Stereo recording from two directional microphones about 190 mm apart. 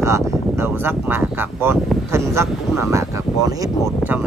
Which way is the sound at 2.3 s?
15° right (ahead or behind).